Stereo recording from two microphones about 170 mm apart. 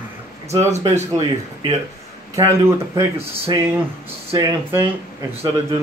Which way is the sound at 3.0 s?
15° right (ahead or behind).